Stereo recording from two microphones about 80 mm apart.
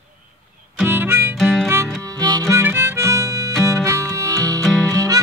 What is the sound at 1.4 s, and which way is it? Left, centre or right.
Music, centre.